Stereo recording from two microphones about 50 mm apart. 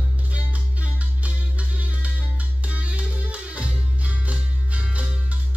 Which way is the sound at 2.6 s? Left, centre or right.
Right.